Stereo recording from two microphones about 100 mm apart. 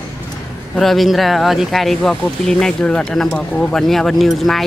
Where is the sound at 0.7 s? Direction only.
Centre (ahead or behind).